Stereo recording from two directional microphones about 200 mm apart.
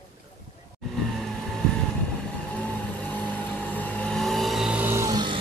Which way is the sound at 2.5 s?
5° left (ahead or behind).